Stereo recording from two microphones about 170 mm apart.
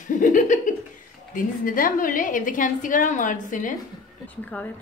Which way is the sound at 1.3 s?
55° left (ahead or behind).